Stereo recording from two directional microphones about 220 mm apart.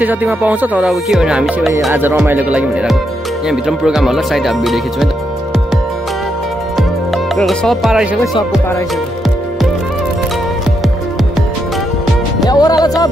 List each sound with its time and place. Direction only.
0.0 s music: 10° right (ahead or behind)
3.4 s speech: centre (ahead or behind)
7.3 s speech: centre (ahead or behind)
12.4 s music: 15° left (ahead or behind)